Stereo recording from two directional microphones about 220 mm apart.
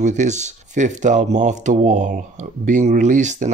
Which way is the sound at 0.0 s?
35° right (ahead or behind).